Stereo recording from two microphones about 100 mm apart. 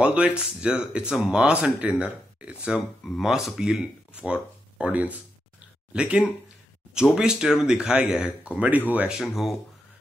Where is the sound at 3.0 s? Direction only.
Centre (ahead or behind).